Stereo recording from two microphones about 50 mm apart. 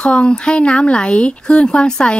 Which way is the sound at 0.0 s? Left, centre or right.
Centre.